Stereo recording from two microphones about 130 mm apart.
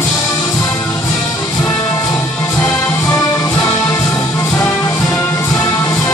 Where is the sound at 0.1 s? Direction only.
25° left (ahead or behind).